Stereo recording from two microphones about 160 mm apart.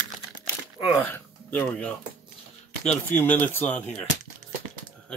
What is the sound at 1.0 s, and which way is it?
Speech, 10° left (ahead or behind).